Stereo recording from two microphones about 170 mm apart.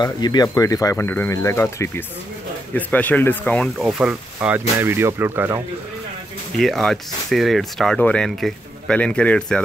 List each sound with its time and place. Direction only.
0.0 s speech: 25° left (ahead or behind); by 5.6 s 15° right (ahead or behind)
6.6 s speech: centre (ahead or behind)